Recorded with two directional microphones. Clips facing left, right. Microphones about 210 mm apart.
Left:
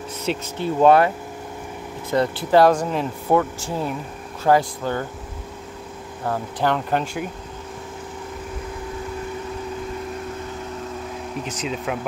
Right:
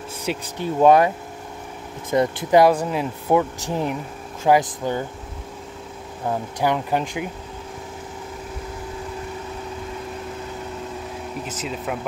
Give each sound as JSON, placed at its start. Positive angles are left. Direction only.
{"t": 0.2, "sound": "speech", "side_deg": -10}
{"t": 6.2, "sound": "speech", "side_deg": -15}
{"t": 11.4, "sound": "speech", "side_deg": -5}